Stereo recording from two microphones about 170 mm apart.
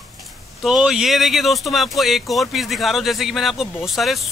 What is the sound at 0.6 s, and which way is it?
Speech, centre (ahead or behind).